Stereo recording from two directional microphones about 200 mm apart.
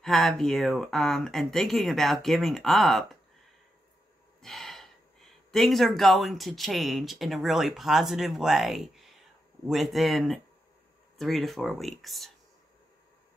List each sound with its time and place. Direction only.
0.0 s speech: centre (ahead or behind)
4.4 s speech: centre (ahead or behind)